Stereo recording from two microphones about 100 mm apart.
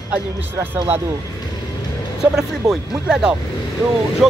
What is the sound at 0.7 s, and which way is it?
Speech, 20° right (ahead or behind).